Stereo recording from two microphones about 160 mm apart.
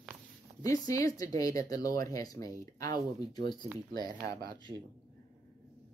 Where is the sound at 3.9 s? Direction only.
25° left (ahead or behind).